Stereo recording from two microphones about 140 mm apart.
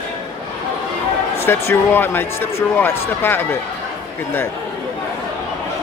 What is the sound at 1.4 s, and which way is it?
Speech, 15° left (ahead or behind).